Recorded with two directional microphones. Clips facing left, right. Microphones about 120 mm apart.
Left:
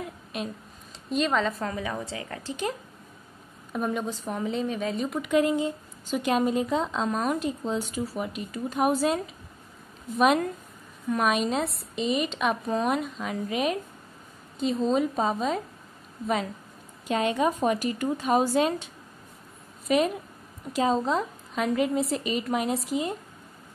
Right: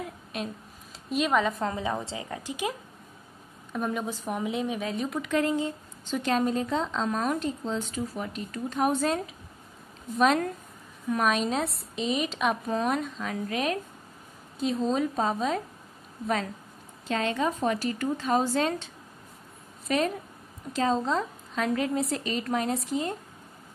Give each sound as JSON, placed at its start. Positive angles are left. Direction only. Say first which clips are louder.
{"t": 0.0, "sound": "a sound", "louder": "left 1 dB", "side_deg": 0}
{"t": 1.1, "sound": "a woman's voice", "louder": "even", "side_deg": -10}
{"t": 1.7, "sound": "a woman's voice", "louder": "right 1 dB", "side_deg": -25}
{"t": 3.7, "sound": "a woman's voice", "louder": "left 2 dB", "side_deg": 0}
{"t": 4.0, "sound": "a woman's voice", "louder": "even", "side_deg": -10}
{"t": 5.3, "sound": "a woman's voice", "louder": "left 4 dB", "side_deg": 15}
{"t": 17.1, "sound": "a woman's voice", "louder": "left 3 dB", "side_deg": 15}
{"t": 19.9, "sound": "a woman's voice", "louder": "left 3 dB", "side_deg": 10}